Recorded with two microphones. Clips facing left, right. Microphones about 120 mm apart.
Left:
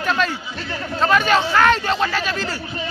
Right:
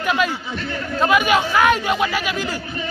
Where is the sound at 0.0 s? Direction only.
10° right (ahead or behind).